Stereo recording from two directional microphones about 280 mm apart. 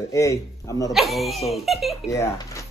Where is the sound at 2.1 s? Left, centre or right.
Centre.